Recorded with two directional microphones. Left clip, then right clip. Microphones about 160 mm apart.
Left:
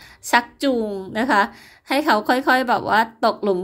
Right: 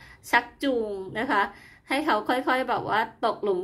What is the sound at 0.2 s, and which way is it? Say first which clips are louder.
A woman's voice: left 5 dB; 35° left (ahead or behind).